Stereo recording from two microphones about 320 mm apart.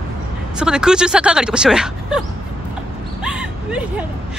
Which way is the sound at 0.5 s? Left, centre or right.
Centre.